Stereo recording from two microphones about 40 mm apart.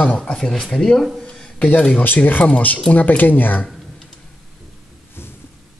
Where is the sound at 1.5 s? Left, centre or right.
Left.